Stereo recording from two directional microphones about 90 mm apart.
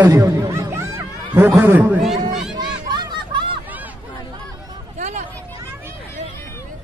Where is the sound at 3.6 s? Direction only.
20° right (ahead or behind).